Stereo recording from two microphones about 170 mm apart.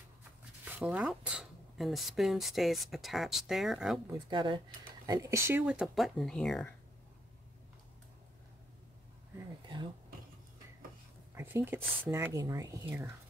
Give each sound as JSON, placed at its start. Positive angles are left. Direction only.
{"t": 0.7, "sound": "speech", "side_deg": -10}
{"t": 4.1, "sound": "speech", "side_deg": -30}
{"t": 11.3, "sound": "speech", "side_deg": -15}